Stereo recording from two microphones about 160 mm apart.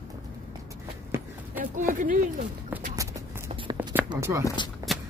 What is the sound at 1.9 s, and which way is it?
Speech, 55° right (ahead or behind).